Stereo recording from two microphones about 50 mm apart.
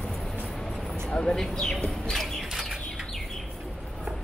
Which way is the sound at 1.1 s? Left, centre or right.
Left.